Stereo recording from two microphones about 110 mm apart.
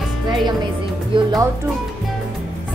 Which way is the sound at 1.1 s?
45° right (ahead or behind).